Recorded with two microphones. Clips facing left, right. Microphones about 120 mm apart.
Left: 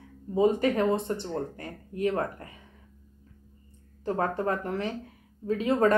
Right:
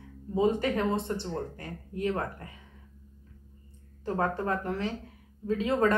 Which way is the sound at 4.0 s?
20° left (ahead or behind).